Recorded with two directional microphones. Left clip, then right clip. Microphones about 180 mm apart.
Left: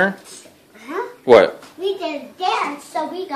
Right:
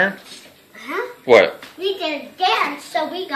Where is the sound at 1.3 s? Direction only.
25° left (ahead or behind).